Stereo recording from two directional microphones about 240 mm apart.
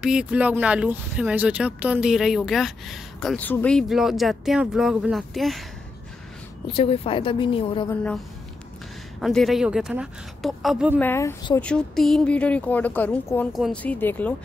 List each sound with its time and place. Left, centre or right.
0.0 s speech: centre
6.7 s a woman's voice: left
7.9 s a woman's voice: centre
9.2 s speech: centre
11.0 s speech: centre